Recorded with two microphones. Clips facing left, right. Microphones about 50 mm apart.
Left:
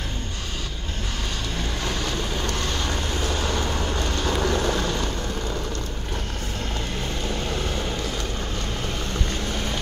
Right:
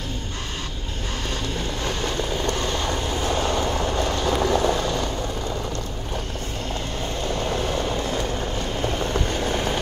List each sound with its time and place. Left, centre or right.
2.5 s vehicle: right
3.6 s vehicle: centre
9.1 s boiling: right